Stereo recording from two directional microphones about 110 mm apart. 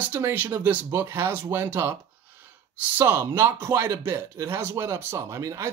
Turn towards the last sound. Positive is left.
turn(degrees=-25)  # may be behind; listen again after turning